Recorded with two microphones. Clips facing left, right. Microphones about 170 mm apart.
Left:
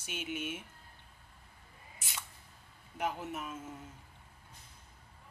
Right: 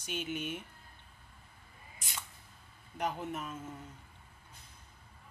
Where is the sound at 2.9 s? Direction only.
5° left (ahead or behind).